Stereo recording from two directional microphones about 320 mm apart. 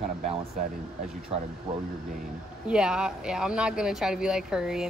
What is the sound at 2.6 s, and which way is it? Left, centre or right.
Speech, centre.